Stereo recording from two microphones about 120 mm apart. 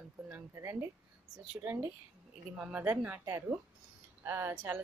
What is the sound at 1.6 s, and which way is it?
Speech, 25° right (ahead or behind).